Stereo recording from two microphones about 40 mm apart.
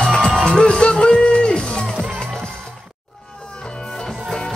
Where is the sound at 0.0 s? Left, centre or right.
Centre.